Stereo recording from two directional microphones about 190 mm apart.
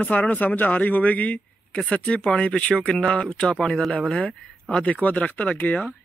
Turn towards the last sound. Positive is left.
turn(degrees=5)  # may be behind; listen again after turning